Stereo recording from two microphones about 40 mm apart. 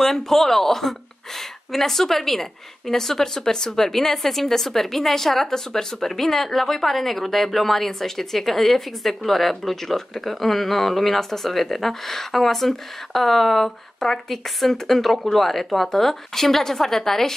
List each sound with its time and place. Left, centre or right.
0.0 s speech: centre